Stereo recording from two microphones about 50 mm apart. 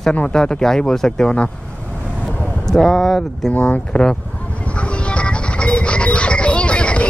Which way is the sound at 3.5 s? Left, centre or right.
Left.